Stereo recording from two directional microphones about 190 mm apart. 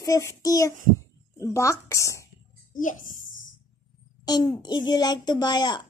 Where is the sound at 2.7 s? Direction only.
45° left (ahead or behind).